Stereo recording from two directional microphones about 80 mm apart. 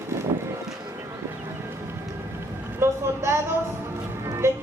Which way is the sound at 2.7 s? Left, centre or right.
Right.